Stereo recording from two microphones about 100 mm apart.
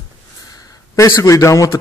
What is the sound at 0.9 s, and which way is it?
Speech, 30° left (ahead or behind).